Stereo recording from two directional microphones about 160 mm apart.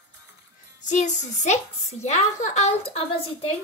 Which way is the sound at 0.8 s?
50° left (ahead or behind).